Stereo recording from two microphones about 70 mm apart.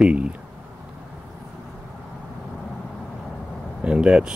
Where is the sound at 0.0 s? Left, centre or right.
Centre.